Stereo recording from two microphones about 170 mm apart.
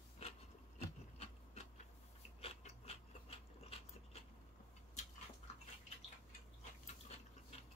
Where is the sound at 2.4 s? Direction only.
35° left (ahead or behind).